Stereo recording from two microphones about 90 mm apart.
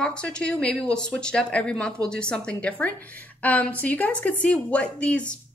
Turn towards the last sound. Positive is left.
turn(degrees=10)  # may be behind; listen again after turning